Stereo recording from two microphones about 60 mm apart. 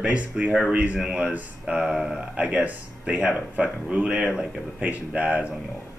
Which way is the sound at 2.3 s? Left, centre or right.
Right.